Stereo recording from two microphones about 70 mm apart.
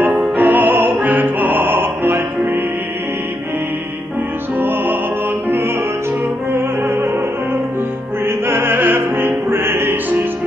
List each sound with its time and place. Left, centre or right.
0.0 s opera: right
4.6 s music: right
6.5 s music: right
8.3 s music: right